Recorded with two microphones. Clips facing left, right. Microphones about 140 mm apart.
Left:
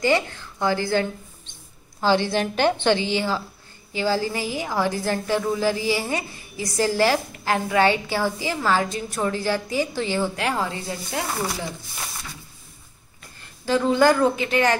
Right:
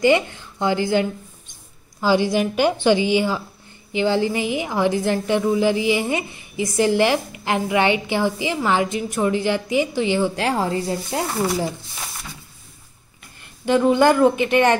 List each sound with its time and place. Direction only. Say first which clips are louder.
0.0 s a woman's voice: right 4 dB; 20° right (ahead or behind)
10.3 s a woman's voice: right 4 dB; 30° right (ahead or behind)
13.7 s a woman's voice: right 3 dB; 20° right (ahead or behind)